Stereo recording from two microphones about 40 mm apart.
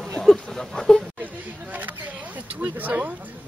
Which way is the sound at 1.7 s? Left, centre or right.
Right.